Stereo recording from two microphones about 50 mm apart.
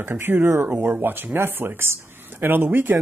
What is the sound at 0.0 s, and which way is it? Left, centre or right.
Speech, right.